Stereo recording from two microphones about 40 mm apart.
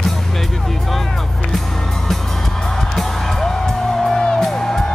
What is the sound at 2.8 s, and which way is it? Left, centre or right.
Music, centre.